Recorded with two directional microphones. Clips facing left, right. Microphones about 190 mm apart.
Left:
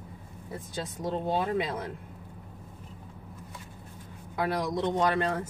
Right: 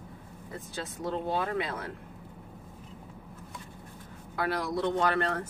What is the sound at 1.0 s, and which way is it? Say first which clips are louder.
Speech: left 2 dB; 20° left (ahead or behind).